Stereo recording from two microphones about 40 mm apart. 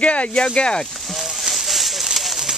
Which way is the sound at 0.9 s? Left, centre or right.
Centre.